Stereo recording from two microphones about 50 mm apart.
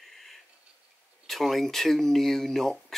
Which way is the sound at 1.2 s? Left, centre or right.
Centre.